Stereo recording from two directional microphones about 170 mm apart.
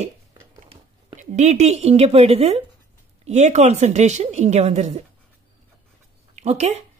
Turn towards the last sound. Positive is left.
turn(degrees=-40)  # may be behind; listen again after turning